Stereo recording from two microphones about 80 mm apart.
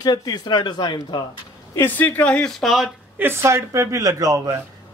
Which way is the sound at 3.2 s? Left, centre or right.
Right.